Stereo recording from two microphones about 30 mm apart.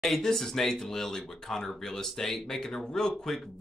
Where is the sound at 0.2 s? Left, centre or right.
Centre.